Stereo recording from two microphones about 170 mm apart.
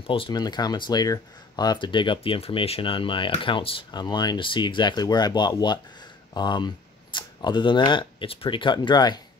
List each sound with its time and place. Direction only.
0.0 s speech: 30° left (ahead or behind)